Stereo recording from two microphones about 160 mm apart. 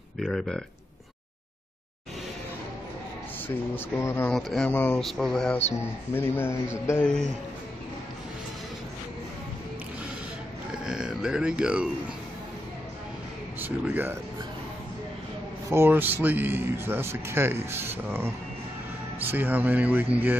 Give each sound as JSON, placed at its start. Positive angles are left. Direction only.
{"t": 0.2, "sound": "speech", "side_deg": 5}
{"t": 3.4, "sound": "speech", "side_deg": 15}
{"t": 4.3, "sound": "speech", "side_deg": 0}
{"t": 5.8, "sound": "speech", "side_deg": 15}
{"t": 10.9, "sound": "speech", "side_deg": -5}
{"t": 13.6, "sound": "speech", "side_deg": -10}
{"t": 15.7, "sound": "speech", "side_deg": -15}